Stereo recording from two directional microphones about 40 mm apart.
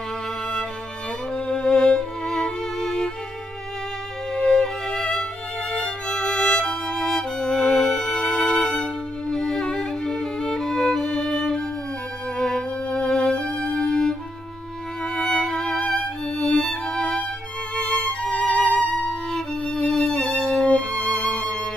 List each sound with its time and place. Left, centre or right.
1.3 s music: centre
4.3 s music: centre
5.8 s violin: left
7.9 s music: left
15.1 s music: left
15.5 s violin: centre
16.4 s music: centre
17.8 s violin: left
18.9 s violin: centre
20.6 s violin: left
21.3 s music: centre